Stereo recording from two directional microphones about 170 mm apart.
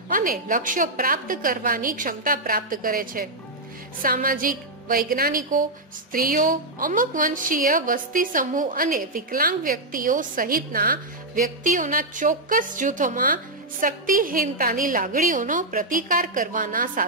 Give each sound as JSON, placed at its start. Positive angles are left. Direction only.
{"t": 0.1, "sound": "a woman's voice", "side_deg": -55}